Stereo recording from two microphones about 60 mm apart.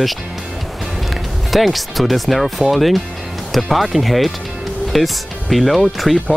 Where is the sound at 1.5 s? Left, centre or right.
Centre.